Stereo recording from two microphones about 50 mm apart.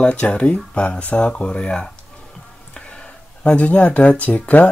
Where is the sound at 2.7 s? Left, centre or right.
Left.